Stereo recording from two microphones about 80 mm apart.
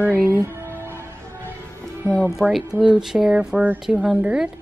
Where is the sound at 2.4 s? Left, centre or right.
Centre.